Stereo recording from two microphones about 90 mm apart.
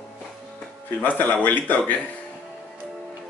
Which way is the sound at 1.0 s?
20° left (ahead or behind).